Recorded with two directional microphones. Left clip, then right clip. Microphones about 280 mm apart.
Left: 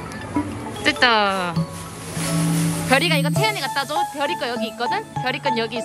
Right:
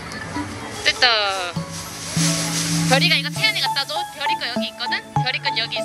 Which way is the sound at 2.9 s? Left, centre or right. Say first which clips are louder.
Even; left.